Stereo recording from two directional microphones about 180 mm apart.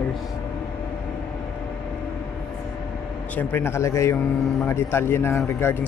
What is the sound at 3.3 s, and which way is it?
Speech, 10° left (ahead or behind).